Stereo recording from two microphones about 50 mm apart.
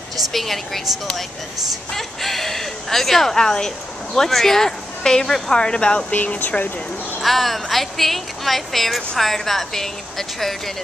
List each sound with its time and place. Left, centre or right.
0.3 s speech: centre
6.1 s speech: left
7.2 s speech: centre